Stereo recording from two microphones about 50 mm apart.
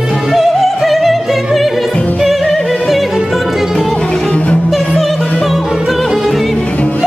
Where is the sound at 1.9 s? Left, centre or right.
Left.